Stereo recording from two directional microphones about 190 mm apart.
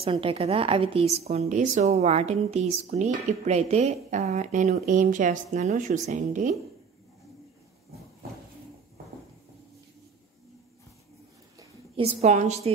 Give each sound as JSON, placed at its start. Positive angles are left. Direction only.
{"t": 0.0, "sound": "a woman's voice", "side_deg": -30}
{"t": 12.0, "sound": "a woman's voice", "side_deg": -35}